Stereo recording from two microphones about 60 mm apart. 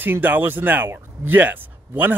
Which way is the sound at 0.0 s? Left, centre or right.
Right.